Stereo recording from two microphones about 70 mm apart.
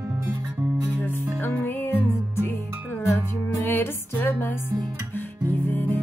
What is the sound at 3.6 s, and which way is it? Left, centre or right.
Music, left.